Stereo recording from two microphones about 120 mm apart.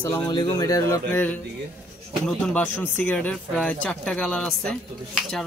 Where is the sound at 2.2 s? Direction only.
10° left (ahead or behind).